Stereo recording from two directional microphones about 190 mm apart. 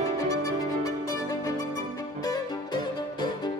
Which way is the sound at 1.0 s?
15° left (ahead or behind).